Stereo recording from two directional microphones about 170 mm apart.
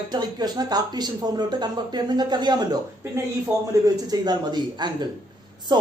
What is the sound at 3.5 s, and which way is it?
Speech, 5° right (ahead or behind).